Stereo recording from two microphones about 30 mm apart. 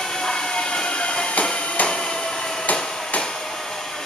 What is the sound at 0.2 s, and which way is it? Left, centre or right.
Train, left.